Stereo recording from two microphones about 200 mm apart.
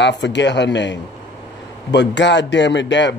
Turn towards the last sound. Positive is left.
turn(degrees=60)  # may be behind; listen again after turning